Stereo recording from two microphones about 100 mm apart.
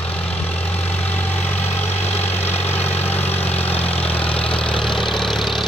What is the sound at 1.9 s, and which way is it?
Vehicle, 90° left.